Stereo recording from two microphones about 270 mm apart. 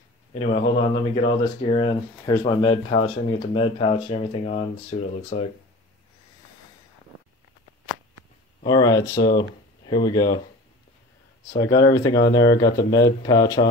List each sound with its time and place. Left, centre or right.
0.3 s speech: left
8.6 s speech: centre
11.5 s speech: centre